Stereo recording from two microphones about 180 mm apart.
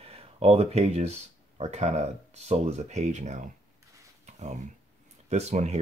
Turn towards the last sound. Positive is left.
turn(degrees=-40)  # may be behind; listen again after turning